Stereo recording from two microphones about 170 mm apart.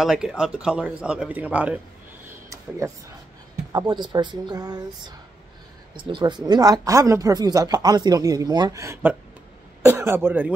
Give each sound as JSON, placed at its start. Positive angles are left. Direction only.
{"t": 0.0, "sound": "speech", "side_deg": -5}
{"t": 2.2, "sound": "a sound", "side_deg": -15}
{"t": 3.9, "sound": "speech", "side_deg": -25}
{"t": 6.1, "sound": "speech", "side_deg": -25}